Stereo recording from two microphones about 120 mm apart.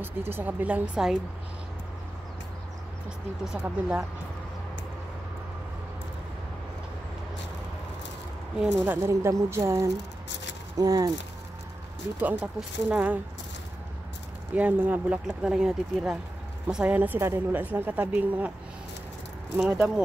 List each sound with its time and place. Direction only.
0.3 s a woman's voice: 15° right (ahead or behind)
3.4 s a woman's voice: 10° right (ahead or behind)
8.7 s speech: 15° right (ahead or behind); by 11.1 s 30° right (ahead or behind)
12.2 s a woman's voice: 10° right (ahead or behind)
14.5 s a woman's voice: 15° right (ahead or behind)
19.5 s a woman's voice: 10° right (ahead or behind)